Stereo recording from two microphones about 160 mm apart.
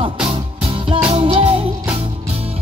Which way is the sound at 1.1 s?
40° right (ahead or behind).